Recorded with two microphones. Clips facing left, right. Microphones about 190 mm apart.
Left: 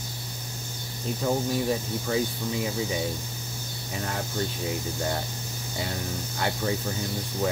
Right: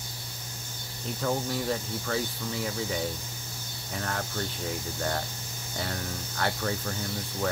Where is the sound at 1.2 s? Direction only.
15° left (ahead or behind).